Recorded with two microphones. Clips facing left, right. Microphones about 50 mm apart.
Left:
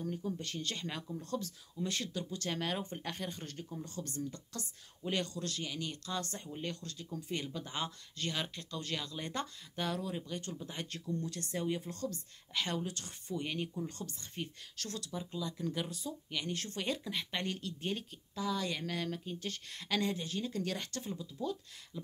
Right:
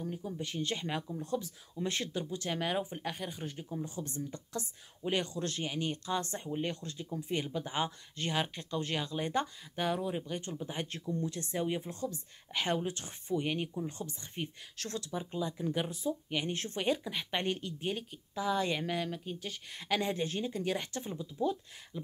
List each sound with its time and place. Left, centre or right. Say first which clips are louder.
0.0 s speech: even; centre
1.9 s speech: right 4 dB; right
2.3 s speech: right 3 dB; centre
17.7 s speech: right 2 dB; centre
18.4 s speech: right 4 dB; right
18.9 s speech: right 2 dB; centre
20.1 s speech: right 3 dB; right
20.4 s speech: right 3 dB; centre